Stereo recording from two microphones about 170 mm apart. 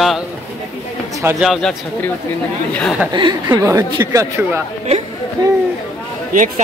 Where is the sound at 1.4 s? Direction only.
Centre (ahead or behind).